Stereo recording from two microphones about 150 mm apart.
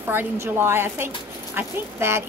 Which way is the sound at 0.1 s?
15° right (ahead or behind).